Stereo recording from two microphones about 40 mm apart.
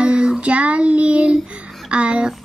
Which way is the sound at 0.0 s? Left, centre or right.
Right.